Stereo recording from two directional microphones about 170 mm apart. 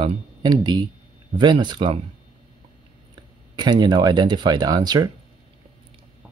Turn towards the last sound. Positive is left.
turn(degrees=-25)  # may be behind; listen again after turning